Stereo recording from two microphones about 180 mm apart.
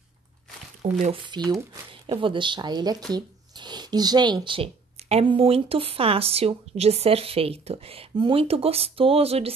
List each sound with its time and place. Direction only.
0.8 s speech: 40° right (ahead or behind)
1.3 s speech: 25° right (ahead or behind)